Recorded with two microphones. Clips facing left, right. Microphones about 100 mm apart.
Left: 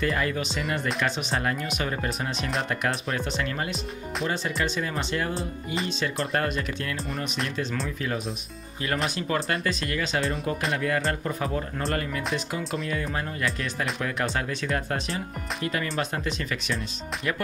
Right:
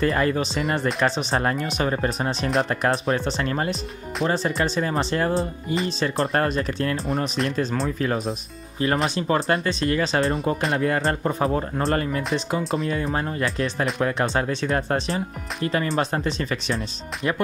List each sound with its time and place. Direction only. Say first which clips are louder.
0.0 s speech: right 5 dB; 35° right (ahead or behind)